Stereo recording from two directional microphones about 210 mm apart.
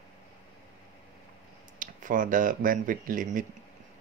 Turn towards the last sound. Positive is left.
turn(degrees=-40)  # may be behind; listen again after turning